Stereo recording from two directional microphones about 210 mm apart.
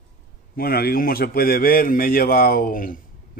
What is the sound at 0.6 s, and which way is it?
A man's voice, 45° left (ahead or behind).